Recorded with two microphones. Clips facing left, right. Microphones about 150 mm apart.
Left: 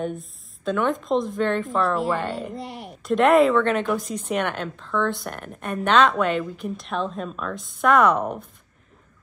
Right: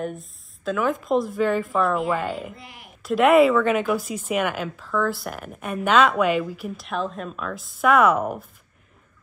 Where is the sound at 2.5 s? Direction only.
40° left (ahead or behind).